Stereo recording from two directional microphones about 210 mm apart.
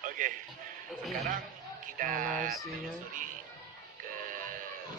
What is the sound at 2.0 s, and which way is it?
Speech, 40° right (ahead or behind).